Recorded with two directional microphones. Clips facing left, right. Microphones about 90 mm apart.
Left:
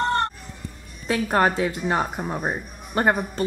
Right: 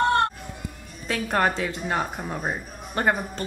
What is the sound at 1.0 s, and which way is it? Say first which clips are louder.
Speech: left 3 dB; 5° left (ahead or behind).